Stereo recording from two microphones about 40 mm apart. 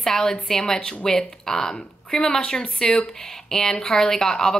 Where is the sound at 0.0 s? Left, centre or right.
Centre.